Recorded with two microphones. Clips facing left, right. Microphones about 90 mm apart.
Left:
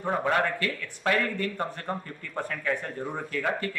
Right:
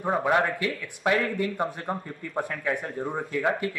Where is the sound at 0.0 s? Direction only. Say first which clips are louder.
Right 2 dB; 15° right (ahead or behind).